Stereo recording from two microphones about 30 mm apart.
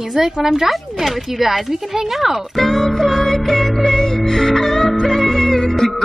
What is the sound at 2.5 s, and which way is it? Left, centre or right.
Music, centre.